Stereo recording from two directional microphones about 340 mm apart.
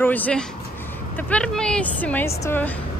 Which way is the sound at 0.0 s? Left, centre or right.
Centre.